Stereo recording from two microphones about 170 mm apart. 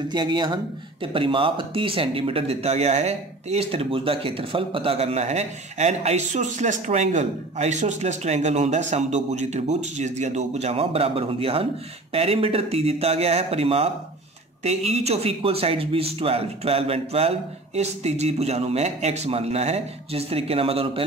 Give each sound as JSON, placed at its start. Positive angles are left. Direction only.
{"t": 0.1, "sound": "speech", "side_deg": -25}
{"t": 14.9, "sound": "speech", "side_deg": -40}